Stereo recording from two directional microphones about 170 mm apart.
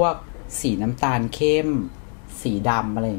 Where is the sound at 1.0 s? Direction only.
10° left (ahead or behind).